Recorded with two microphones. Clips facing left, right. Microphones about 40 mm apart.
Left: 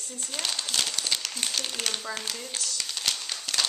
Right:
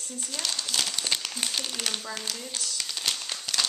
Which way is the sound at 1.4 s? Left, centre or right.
Centre.